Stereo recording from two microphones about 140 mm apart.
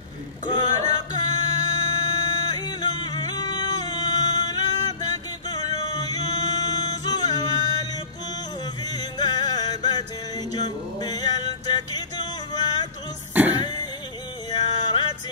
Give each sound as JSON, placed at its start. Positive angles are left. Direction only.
{"t": 0.5, "sound": "music", "side_deg": 30}
{"t": 8.8, "sound": "music", "side_deg": 30}
{"t": 13.3, "sound": "throat clearing", "side_deg": -10}
{"t": 14.5, "sound": "music", "side_deg": 30}